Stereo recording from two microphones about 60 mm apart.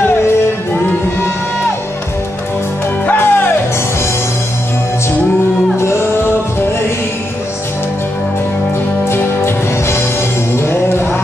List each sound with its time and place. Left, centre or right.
3.1 s music: left
9.0 s music: left